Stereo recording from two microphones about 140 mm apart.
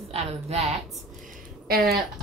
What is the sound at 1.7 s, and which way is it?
Speech, 90° right.